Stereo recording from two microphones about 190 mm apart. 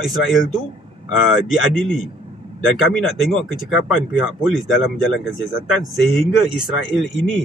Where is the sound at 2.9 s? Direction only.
Centre (ahead or behind).